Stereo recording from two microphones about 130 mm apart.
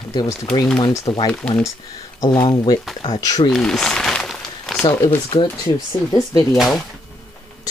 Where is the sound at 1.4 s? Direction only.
5° left (ahead or behind).